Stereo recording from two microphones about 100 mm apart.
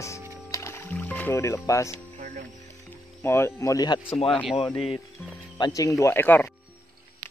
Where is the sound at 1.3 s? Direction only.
30° left (ahead or behind).